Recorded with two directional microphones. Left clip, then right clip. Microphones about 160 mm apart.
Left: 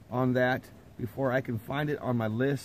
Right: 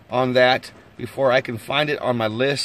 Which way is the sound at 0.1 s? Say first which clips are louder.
Right 11 dB; 30° right (ahead or behind).